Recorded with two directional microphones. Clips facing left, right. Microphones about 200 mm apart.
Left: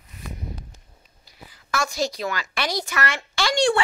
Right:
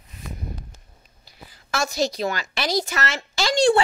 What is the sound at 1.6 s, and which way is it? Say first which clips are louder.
A woman's voice: right 2 dB; 25° right (ahead or behind).